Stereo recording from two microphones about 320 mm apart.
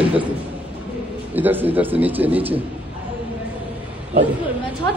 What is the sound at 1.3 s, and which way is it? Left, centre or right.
A man's voice, centre.